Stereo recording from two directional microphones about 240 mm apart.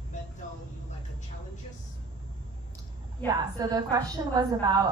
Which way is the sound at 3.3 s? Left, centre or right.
Centre.